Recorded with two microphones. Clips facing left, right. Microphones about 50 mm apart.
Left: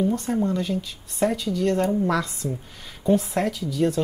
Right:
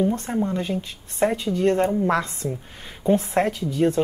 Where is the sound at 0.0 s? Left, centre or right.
Right.